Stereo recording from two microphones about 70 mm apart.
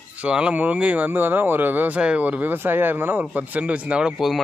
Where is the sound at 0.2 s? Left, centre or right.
Centre.